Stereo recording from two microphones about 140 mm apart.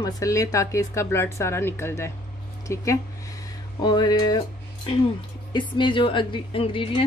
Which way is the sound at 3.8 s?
30° left (ahead or behind).